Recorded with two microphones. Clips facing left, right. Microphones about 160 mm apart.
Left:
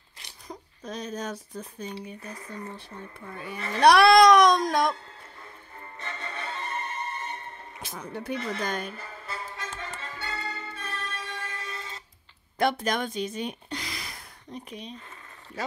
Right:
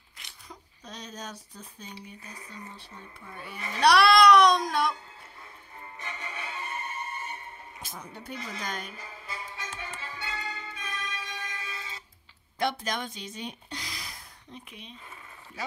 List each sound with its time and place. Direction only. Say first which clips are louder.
0.2 s speech: left 6 dB; 45° left (ahead or behind)
3.5 s speech: left 5 dB; 10° right (ahead or behind)
3.8 s speech: left 3 dB; 50° left (ahead or behind)
5.9 s music: left 3 dB; 10° right (ahead or behind)
7.9 s speech: left 8 dB; 75° left (ahead or behind); by 8.8 s 55° left (ahead or behind)
8.9 s music: left 3 dB; 10° right (ahead or behind)
12.5 s speech: left 5 dB; 55° left (ahead or behind)
14.5 s speech: left 7 dB; 40° left (ahead or behind)